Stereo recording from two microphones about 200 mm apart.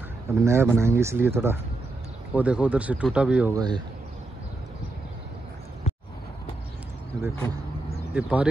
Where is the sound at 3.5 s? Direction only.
20° right (ahead or behind).